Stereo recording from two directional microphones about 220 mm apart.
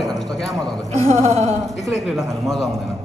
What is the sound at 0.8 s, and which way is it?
Speech, 30° right (ahead or behind).